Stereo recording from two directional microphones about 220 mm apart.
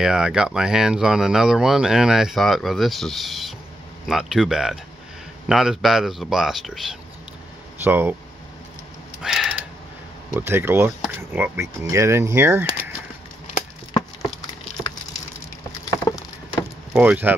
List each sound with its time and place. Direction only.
0.0 s speech: 5° right (ahead or behind)
9.2 s a sound: 5° right (ahead or behind)
10.3 s speech: 10° right (ahead or behind)
16.1 s patter: 20° left (ahead or behind)
16.9 s speech: 5° right (ahead or behind)